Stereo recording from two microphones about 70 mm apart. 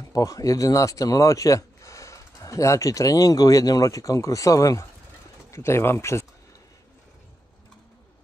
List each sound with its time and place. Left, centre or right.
0.1 s speech: left
5.5 s speech: left